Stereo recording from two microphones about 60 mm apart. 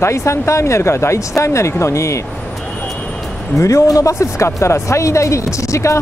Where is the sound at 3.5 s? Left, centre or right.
Left.